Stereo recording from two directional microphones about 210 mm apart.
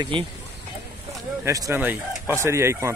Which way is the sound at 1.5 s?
15° right (ahead or behind).